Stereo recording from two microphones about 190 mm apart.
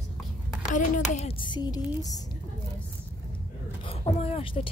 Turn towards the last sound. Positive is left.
turn(degrees=30)  # may be behind; listen again after turning